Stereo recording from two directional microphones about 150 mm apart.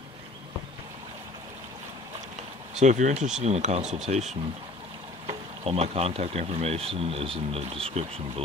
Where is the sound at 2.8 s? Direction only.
50° right (ahead or behind).